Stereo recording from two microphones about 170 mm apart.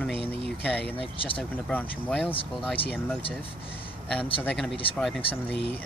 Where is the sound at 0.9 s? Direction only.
30° left (ahead or behind).